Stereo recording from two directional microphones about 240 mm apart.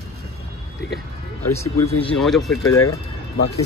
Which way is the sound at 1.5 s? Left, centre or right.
Centre.